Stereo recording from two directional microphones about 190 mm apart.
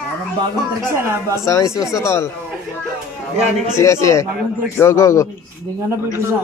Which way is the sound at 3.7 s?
15° left (ahead or behind).